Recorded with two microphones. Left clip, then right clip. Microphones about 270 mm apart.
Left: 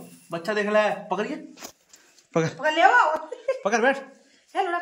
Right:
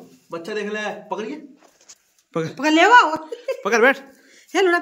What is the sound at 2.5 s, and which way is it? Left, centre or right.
Speech, right.